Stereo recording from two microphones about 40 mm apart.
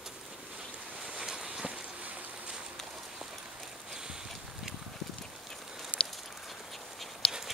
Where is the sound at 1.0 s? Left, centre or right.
Right.